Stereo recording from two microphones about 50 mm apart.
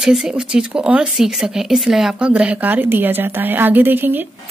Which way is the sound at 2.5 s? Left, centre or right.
Right.